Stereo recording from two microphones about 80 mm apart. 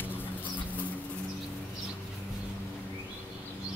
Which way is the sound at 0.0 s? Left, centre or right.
Left.